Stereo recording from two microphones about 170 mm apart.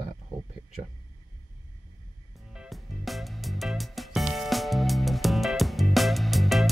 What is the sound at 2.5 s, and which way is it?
Music, centre (ahead or behind).